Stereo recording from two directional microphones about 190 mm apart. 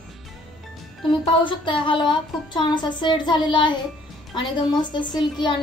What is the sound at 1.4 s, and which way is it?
Speech, 25° left (ahead or behind).